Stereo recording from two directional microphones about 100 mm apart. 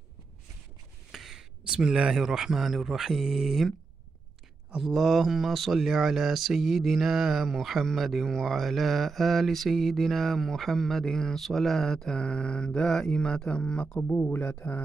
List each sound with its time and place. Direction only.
1.1 s speech: 5° right (ahead or behind)
14.3 s mantra: 20° left (ahead or behind)